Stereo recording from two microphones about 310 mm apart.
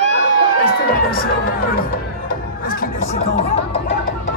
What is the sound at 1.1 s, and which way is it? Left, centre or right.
Music, left.